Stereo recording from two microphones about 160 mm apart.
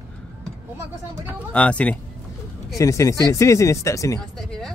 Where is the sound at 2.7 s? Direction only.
20° left (ahead or behind).